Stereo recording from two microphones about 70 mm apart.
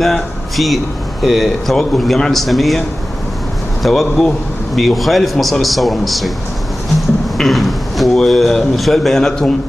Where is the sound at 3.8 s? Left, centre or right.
Centre.